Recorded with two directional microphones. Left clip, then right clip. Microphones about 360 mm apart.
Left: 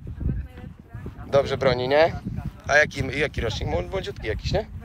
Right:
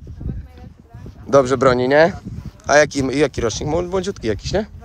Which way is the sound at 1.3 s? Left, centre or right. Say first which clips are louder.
Right 7 dB; centre.